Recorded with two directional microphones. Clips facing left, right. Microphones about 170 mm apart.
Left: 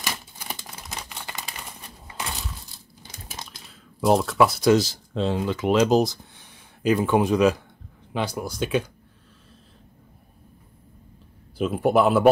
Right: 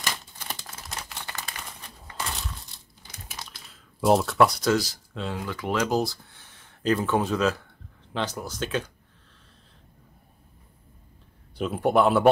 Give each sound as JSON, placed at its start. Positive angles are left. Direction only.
{"t": 0.8, "sound": "a sound", "side_deg": 5}
{"t": 1.4, "sound": "crumpling", "side_deg": 5}
{"t": 4.0, "sound": "speech", "side_deg": 0}
{"t": 4.6, "sound": "speech", "side_deg": 25}
{"t": 11.5, "sound": "speech", "side_deg": 0}